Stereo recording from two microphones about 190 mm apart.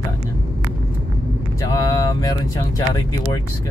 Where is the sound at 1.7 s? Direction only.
15° left (ahead or behind).